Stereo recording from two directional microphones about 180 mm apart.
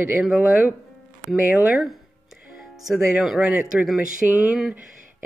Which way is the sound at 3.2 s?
5° right (ahead or behind).